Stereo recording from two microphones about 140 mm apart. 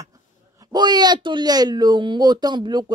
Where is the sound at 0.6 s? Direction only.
30° right (ahead or behind).